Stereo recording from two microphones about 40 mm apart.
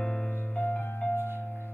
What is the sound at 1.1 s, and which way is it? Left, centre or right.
Music, left.